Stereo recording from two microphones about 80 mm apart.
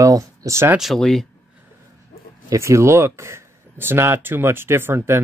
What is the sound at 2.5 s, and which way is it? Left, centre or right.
Speech, right.